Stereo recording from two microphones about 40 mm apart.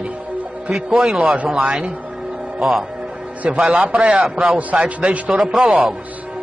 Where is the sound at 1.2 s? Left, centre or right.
Right.